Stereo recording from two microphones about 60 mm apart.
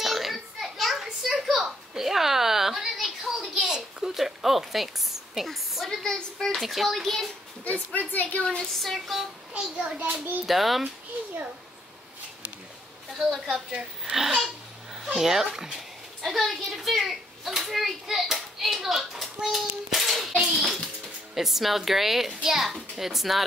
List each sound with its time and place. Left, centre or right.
0.0 s a sound: centre
6.0 s a child's voice: centre
7.9 s a woman's voice: left
8.5 s speech: centre
8.9 s a child's voice: centre
9.6 s a woman's voice: centre
10.4 s a child's voice: centre
13.2 s a child's voice: centre
13.7 s a woman's voice: centre
19.9 s a sound: centre
21.4 s a child's voice: centre